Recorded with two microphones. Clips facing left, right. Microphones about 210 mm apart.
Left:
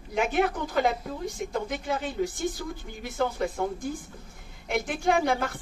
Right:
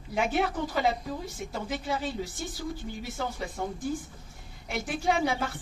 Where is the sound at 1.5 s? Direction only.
55° left (ahead or behind).